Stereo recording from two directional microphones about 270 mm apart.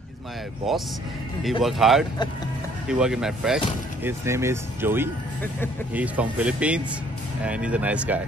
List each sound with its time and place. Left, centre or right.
0.7 s speech: centre